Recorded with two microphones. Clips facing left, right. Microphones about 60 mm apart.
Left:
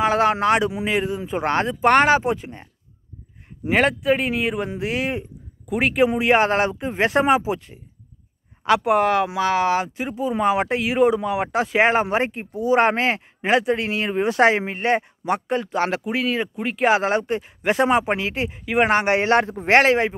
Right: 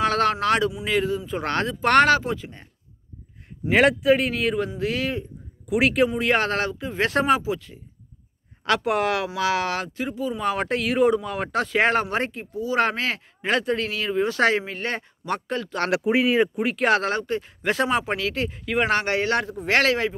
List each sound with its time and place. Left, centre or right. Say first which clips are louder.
0.0 s speech: left 3 dB; centre
2.1 s speech: left 4 dB; left
3.7 s speech: right 1 dB; centre
4.7 s speech: left 1 dB; left
5.7 s speech: left 1 dB; centre
6.1 s speech: left 5 dB; centre
8.6 s speech: left 4 dB; centre
9.9 s speech: left 4 dB; left
12.3 s speech: left 7 dB; left
16.0 s speech: right 4 dB; centre
16.6 s speech: left 2 dB; centre
17.0 s speech: left 4 dB; left